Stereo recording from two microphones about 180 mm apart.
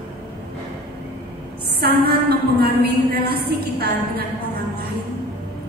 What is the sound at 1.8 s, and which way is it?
A woman's voice, 60° right (ahead or behind).